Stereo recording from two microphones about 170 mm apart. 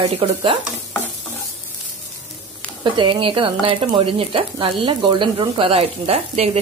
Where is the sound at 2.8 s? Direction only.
30° right (ahead or behind).